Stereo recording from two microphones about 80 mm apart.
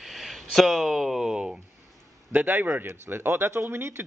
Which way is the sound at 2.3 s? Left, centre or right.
Right.